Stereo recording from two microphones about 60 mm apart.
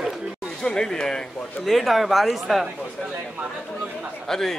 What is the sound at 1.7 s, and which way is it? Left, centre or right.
A man's voice, centre.